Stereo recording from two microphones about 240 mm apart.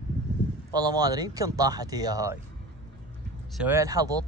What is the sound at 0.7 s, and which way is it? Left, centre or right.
Speech, centre.